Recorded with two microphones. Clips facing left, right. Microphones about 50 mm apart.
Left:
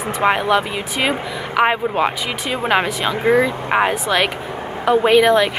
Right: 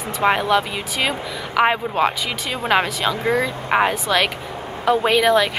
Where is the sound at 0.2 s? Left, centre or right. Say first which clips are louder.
Left 1 dB; centre.